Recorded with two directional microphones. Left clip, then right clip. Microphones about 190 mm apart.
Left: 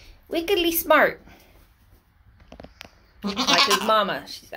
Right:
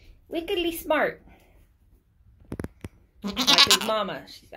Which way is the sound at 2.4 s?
55° right (ahead or behind).